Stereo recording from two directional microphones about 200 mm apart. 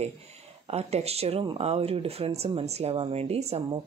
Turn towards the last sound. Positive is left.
turn(degrees=-30)  # may be behind; listen again after turning